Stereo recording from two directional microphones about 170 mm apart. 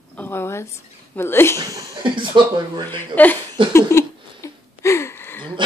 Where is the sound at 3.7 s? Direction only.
15° left (ahead or behind).